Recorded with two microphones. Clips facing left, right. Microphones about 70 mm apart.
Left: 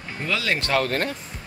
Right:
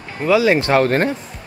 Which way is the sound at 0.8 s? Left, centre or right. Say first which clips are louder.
Right 8 dB; right.